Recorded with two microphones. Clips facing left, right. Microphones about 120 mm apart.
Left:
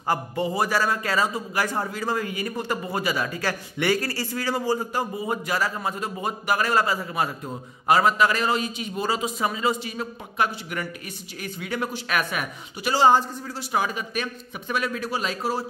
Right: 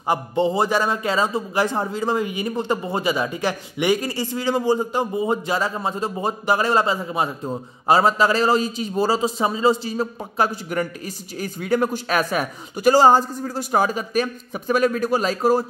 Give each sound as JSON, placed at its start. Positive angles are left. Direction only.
{"t": 0.0, "sound": "a man's voice", "side_deg": -20}